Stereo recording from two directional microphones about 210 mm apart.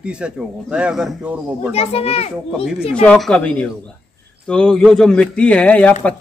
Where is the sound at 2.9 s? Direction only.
5° left (ahead or behind).